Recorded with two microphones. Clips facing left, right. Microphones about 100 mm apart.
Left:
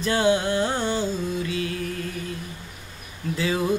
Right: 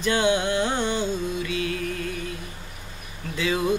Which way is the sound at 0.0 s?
35° left (ahead or behind).